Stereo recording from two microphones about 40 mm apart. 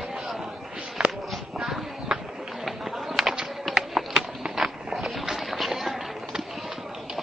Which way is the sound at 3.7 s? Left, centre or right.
Centre.